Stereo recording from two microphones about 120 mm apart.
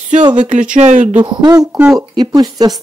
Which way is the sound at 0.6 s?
80° right.